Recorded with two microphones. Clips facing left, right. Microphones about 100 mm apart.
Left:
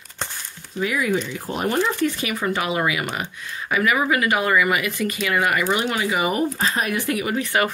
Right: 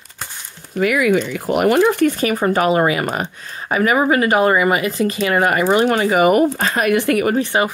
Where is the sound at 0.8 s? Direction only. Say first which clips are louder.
Right 7 dB; 75° right (ahead or behind).